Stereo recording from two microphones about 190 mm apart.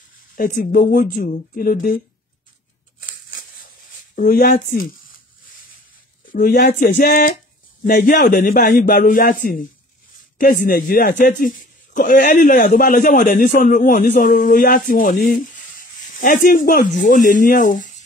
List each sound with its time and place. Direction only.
0.4 s a man's voice: 45° left (ahead or behind)
4.1 s speech: 45° left (ahead or behind)
6.3 s a man's voice: 45° left (ahead or behind)